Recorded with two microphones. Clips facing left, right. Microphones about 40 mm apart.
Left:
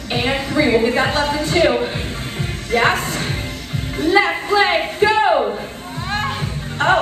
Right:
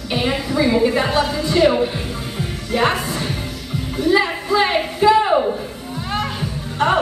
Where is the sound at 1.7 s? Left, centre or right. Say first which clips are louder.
Even; left.